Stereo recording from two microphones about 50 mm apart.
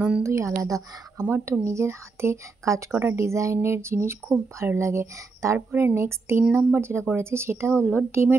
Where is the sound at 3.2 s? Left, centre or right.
Right.